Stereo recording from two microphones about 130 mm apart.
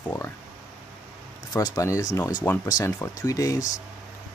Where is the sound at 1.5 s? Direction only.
25° left (ahead or behind).